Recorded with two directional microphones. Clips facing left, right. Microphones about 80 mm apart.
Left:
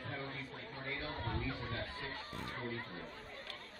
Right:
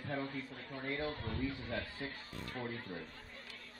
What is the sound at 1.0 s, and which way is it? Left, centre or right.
A man's voice, left.